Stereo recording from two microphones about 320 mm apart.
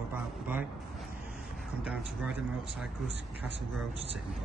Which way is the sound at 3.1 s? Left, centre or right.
Left.